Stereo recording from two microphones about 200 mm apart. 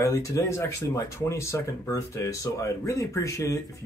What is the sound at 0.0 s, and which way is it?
Speech, 15° left (ahead or behind).